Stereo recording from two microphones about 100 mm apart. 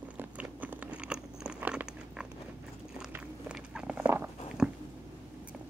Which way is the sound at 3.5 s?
10° right (ahead or behind).